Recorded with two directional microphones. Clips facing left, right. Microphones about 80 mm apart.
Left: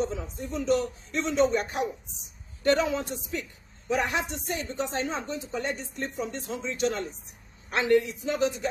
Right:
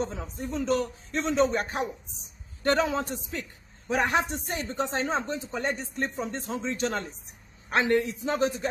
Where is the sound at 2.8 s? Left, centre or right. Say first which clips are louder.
Right 1 dB; right.